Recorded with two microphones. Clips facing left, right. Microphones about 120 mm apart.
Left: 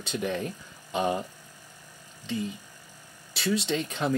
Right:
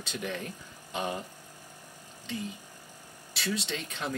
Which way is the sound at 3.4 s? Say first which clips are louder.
Left 7 dB; 30° left (ahead or behind).